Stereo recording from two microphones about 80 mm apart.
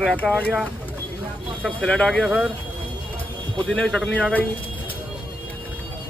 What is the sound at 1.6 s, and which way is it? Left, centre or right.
Speech, centre.